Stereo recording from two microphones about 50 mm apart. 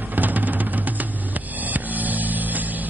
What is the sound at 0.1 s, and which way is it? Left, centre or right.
Music, right.